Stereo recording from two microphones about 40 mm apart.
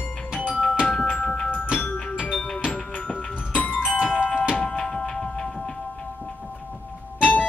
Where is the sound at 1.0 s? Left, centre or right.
Left.